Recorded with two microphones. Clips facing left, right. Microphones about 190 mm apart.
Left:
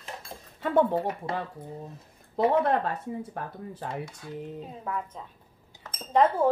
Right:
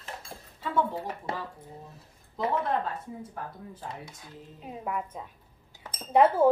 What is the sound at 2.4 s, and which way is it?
Speech, 65° left (ahead or behind).